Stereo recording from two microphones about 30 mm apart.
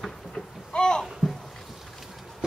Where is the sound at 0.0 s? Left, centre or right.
Left.